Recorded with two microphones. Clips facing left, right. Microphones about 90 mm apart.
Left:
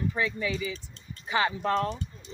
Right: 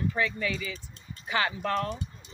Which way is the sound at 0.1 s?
20° left (ahead or behind).